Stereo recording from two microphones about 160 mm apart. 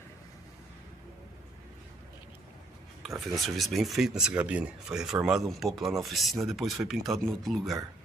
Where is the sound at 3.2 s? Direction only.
Centre (ahead or behind).